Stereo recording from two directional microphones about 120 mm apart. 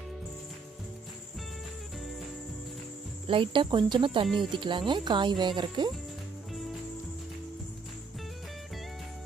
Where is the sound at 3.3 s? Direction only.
45° right (ahead or behind).